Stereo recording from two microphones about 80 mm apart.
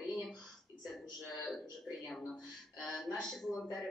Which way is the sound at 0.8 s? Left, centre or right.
Centre.